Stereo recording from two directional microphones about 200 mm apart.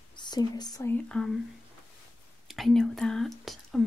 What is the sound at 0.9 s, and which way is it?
Speech, 5° left (ahead or behind).